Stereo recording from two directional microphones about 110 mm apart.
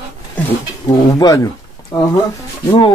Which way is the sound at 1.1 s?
35° left (ahead or behind).